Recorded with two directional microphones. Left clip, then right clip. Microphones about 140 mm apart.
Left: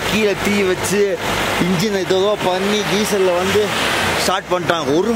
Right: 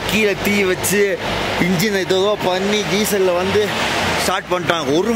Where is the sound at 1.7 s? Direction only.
Centre (ahead or behind).